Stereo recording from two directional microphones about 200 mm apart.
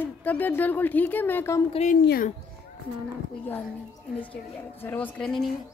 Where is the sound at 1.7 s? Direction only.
35° left (ahead or behind).